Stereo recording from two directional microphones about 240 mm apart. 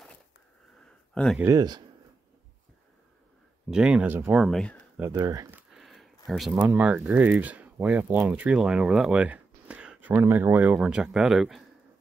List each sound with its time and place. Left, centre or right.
1.1 s speech: centre
1.4 s speech: centre
3.7 s speech: centre
5.1 s a sound: centre
6.5 s speech: centre